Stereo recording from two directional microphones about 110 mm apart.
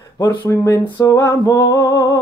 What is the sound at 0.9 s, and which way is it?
Music, 35° left (ahead or behind).